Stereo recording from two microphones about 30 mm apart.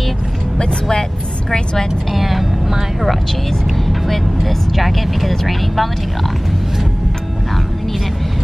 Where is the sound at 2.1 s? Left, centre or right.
Centre.